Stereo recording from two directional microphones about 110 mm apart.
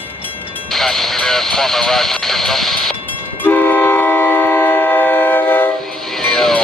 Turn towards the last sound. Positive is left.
turn(degrees=5)  # may be behind; listen again after turning